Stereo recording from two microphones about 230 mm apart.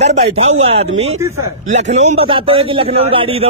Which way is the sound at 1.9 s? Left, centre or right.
Right.